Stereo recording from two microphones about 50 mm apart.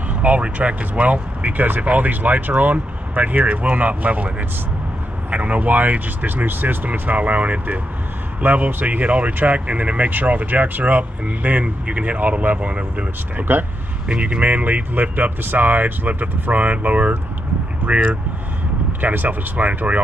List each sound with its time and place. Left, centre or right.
0.1 s speech: right
5.3 s speech: right
13.5 s speech: right
14.0 s speech: right